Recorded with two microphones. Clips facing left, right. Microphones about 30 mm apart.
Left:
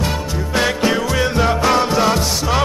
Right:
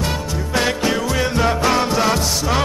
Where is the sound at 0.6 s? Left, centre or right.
Centre.